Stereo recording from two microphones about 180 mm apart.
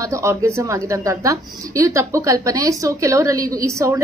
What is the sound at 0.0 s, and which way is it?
A woman's voice, 15° right (ahead or behind).